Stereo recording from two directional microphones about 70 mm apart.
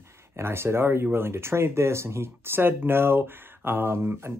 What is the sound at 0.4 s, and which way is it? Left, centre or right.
Speech, right.